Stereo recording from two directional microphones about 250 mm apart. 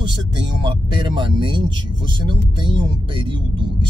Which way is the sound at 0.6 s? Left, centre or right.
Centre.